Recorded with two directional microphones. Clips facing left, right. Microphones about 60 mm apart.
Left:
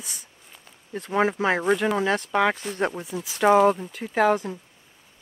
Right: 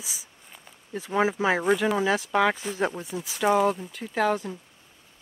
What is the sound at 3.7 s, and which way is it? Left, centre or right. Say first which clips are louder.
Speech: left 4 dB; centre.